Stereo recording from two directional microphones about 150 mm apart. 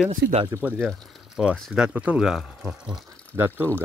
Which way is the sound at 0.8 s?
5° right (ahead or behind).